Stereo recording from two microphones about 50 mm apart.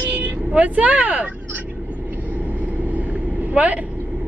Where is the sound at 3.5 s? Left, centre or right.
Right.